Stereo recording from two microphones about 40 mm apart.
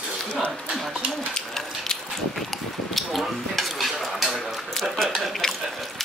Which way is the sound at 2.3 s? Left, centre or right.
Centre.